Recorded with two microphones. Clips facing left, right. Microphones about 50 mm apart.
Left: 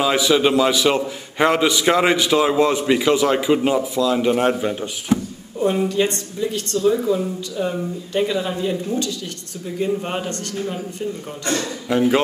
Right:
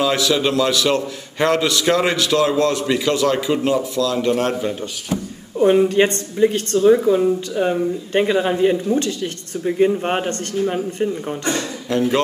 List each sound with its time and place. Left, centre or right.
0.0 s a man's voice: centre
5.6 s a woman's voice: right
11.9 s a man's voice: centre